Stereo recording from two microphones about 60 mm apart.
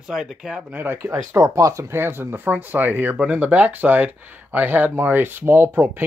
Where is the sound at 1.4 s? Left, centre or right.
Right.